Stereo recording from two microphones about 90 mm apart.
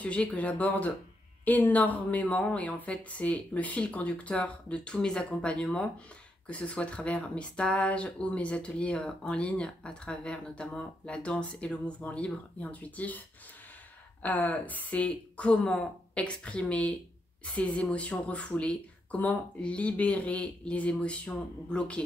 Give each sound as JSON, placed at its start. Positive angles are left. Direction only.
{"t": 0.0, "sound": "speech", "side_deg": 15}
{"t": 14.2, "sound": "speech", "side_deg": 20}